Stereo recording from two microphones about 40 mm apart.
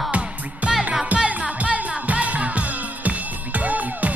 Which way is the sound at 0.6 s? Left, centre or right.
Right.